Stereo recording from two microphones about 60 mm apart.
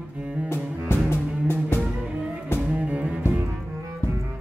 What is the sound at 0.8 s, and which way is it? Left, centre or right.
Music, left.